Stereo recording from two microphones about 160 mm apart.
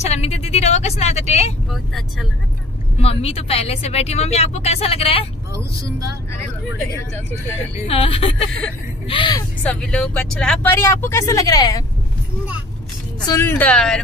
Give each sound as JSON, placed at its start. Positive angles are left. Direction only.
{"t": 0.0, "sound": "speech", "side_deg": 40}
{"t": 1.7, "sound": "speech", "side_deg": 0}
{"t": 3.0, "sound": "speech", "side_deg": 40}
{"t": 5.5, "sound": "speech", "side_deg": -20}
{"t": 7.8, "sound": "speech", "side_deg": 35}
{"t": 9.6, "sound": "speech", "side_deg": 5}
{"t": 13.3, "sound": "speech", "side_deg": 15}